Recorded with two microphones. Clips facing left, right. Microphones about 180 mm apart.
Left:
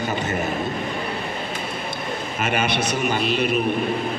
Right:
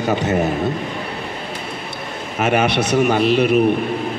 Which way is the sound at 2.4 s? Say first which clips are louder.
Right 7 dB; 65° right (ahead or behind).